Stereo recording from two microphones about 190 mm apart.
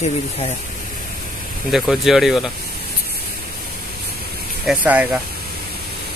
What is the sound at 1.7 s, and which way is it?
Speech, centre (ahead or behind).